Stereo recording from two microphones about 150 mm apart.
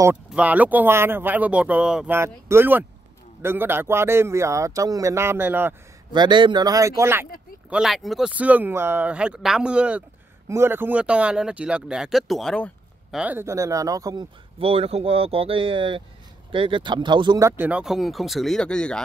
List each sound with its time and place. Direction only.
0.3 s speech: 10° right (ahead or behind)
2.1 s speech: 15° right (ahead or behind)
6.1 s a man's voice: 30° right (ahead or behind)
7.7 s speech: centre (ahead or behind)
13.1 s a man's voice: 10° right (ahead or behind)
14.6 s speech: 40° right (ahead or behind); by 18.9 s 5° left (ahead or behind)